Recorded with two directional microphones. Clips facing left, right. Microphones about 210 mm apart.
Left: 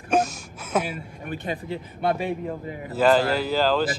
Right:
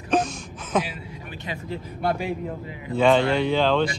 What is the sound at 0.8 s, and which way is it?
Speech, 50° left (ahead or behind).